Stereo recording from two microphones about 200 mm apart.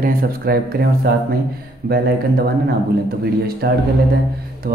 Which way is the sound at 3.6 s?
55° right (ahead or behind).